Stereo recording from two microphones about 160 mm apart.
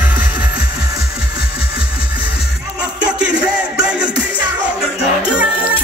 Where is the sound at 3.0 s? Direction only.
5° right (ahead or behind).